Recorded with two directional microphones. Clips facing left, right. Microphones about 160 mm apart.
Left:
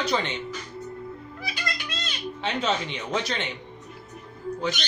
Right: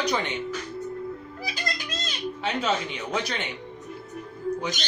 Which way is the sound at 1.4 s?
40° right (ahead or behind).